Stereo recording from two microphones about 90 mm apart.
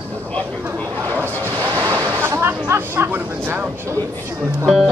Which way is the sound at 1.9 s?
25° right (ahead or behind).